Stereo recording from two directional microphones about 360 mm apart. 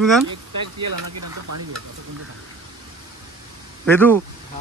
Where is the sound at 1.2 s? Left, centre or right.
Right.